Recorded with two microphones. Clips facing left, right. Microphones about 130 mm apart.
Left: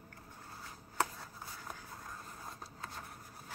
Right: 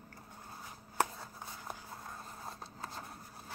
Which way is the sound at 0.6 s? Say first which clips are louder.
Right 2 dB; 20° right (ahead or behind).